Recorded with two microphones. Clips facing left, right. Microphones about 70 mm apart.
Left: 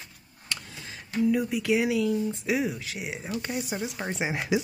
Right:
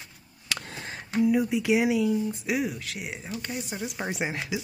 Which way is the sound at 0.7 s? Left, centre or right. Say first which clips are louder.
Right 3 dB; right.